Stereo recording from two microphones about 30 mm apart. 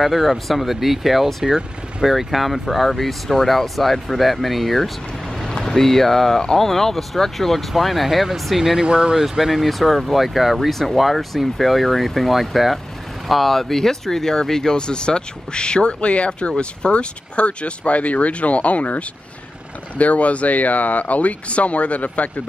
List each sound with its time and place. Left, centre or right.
0.0 s speech: centre
1.4 s speech: centre
2.1 s speech: centre
5.6 s speech: centre
8.7 s speech: right
9.4 s speech: centre
14.8 s speech: left